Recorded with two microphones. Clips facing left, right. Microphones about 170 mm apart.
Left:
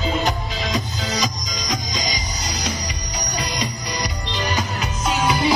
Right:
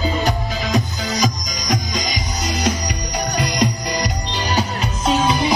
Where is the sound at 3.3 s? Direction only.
50° right (ahead or behind).